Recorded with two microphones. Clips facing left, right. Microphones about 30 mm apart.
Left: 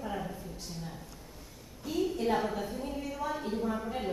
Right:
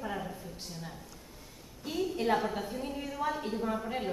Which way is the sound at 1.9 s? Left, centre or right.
Right.